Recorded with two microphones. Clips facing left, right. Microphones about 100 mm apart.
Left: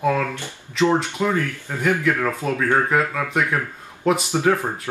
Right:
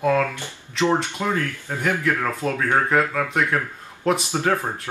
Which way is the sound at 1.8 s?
15° left (ahead or behind).